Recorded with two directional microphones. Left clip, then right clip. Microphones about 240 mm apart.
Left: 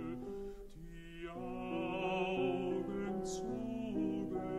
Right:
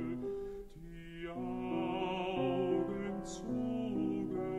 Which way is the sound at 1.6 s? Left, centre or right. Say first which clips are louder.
Right 2 dB; left.